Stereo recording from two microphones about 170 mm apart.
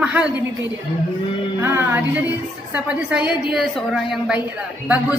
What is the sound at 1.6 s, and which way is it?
A woman's voice, 15° right (ahead or behind).